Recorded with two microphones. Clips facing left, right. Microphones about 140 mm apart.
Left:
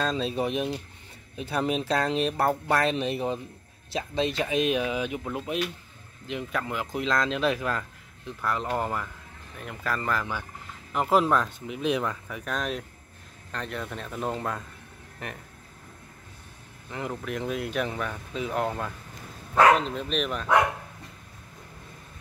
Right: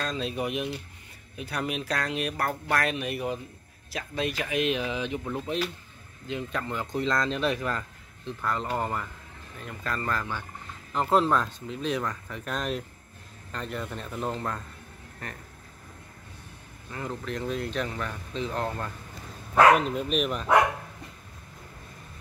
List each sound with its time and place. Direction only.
0.0 s speech: 30° left (ahead or behind); by 11.5 s 5° left (ahead or behind)
11.6 s speech: 15° left (ahead or behind)
16.9 s speech: 15° left (ahead or behind)
19.5 s speech: 10° right (ahead or behind)